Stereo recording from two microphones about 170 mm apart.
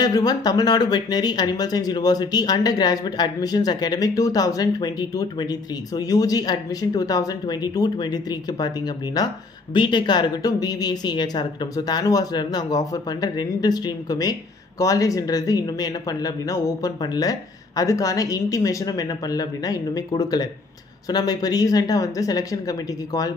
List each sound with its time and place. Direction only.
0.0 s speech: 25° left (ahead or behind)